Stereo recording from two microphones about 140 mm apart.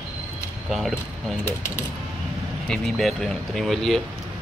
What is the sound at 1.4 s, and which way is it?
Speech, 20° left (ahead or behind).